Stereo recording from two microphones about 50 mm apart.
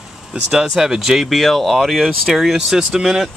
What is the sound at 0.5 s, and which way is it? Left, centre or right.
Speech, centre.